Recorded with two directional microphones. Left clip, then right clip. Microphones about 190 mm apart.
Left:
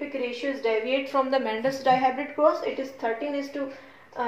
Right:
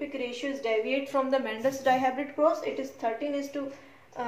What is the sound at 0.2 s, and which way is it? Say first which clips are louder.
A woman's voice: left 6 dB; 5° right (ahead or behind).